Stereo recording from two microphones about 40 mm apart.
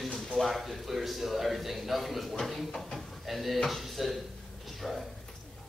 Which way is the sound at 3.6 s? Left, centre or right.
Centre.